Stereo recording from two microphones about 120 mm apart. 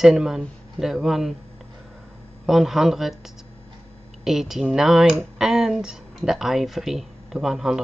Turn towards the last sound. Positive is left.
turn(degrees=-5)  # may be behind; listen again after turning